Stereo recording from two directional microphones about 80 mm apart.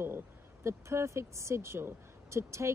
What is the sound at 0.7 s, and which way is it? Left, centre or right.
Speech, right.